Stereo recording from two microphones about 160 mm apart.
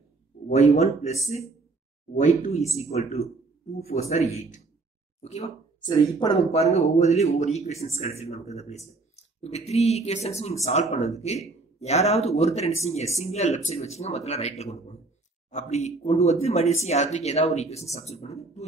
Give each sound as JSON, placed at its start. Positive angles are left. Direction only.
{"t": 0.5, "sound": "a man's voice", "side_deg": 45}
{"t": 2.1, "sound": "a man's voice", "side_deg": 50}
{"t": 5.2, "sound": "a man's voice", "side_deg": 45}
{"t": 5.9, "sound": "speech", "side_deg": 25}
{"t": 6.5, "sound": "a man's voice", "side_deg": 40}